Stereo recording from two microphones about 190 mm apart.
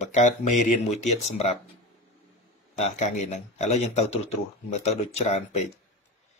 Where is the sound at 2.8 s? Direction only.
35° left (ahead or behind).